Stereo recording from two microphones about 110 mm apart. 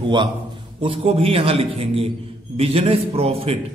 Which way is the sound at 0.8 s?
55° right (ahead or behind).